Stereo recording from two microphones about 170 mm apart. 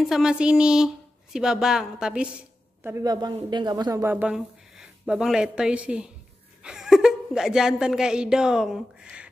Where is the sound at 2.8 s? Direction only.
15° right (ahead or behind).